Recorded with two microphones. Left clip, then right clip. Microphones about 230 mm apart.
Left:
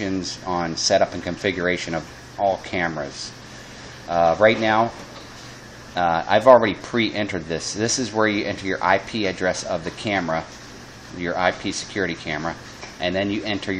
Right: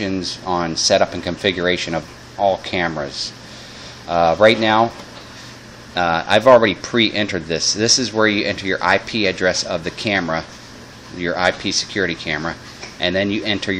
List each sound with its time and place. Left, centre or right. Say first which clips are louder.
0.0 s speech: right 3 dB; centre
5.9 s speech: right 3 dB; centre